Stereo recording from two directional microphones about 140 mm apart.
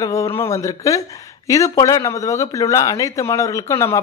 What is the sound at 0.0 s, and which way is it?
Speech, 20° left (ahead or behind).